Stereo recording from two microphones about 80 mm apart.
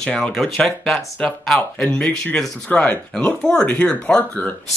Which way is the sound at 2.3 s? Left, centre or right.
Centre.